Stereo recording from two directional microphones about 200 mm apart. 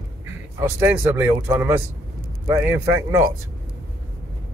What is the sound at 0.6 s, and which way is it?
Speech, 10° right (ahead or behind).